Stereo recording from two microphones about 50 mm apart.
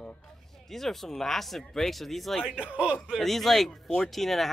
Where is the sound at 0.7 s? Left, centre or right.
Centre.